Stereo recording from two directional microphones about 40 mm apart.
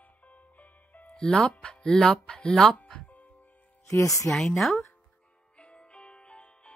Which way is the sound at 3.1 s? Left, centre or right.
Left.